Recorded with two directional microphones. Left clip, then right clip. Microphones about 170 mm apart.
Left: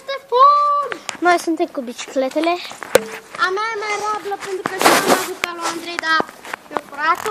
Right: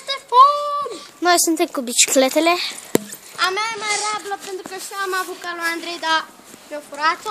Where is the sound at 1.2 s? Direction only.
35° right (ahead or behind).